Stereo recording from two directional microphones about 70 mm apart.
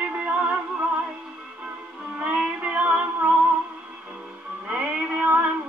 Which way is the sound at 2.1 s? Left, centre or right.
Right.